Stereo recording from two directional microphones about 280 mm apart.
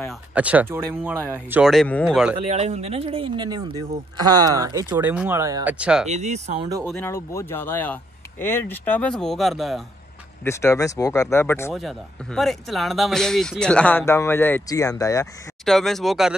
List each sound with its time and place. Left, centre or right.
0.0 s speech: centre
2.3 s speech: right; by 6.0 s centre
6.0 s speech: right
6.8 s speech: centre
15.6 s speech: centre